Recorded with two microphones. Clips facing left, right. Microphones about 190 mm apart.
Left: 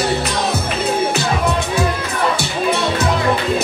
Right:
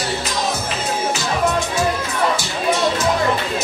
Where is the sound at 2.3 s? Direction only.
60° left (ahead or behind).